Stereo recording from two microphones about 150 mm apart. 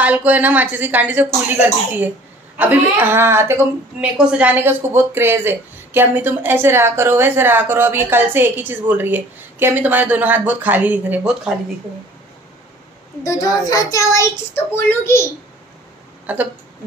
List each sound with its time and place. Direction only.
0.0 s a woman's voice: 10° right (ahead or behind)
13.2 s a child's voice: 25° left (ahead or behind)
16.3 s a woman's voice: 10° right (ahead or behind)